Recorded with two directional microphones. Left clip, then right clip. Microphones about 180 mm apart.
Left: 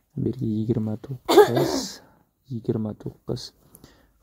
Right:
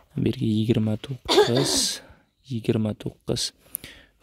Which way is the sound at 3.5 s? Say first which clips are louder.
Right 9 dB; 50° right (ahead or behind).